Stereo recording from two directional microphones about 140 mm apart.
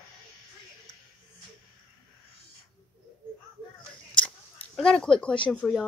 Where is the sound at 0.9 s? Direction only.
30° left (ahead or behind).